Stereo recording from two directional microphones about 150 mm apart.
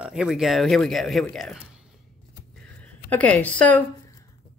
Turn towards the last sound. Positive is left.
turn(degrees=10)  # may be behind; listen again after turning